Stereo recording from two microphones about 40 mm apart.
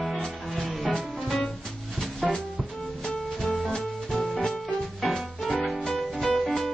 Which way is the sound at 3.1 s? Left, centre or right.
Centre.